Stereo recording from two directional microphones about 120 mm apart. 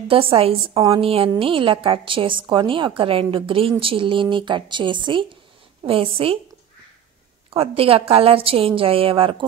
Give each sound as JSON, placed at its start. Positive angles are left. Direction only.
{"t": 0.1, "sound": "a woman's voice", "side_deg": -50}
{"t": 7.5, "sound": "a woman's voice", "side_deg": -50}